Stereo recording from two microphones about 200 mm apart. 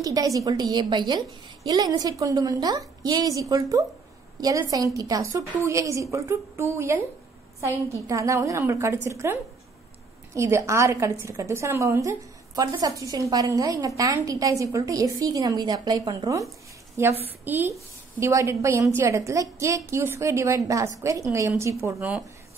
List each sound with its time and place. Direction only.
0.0 s a woman's voice: 20° right (ahead or behind)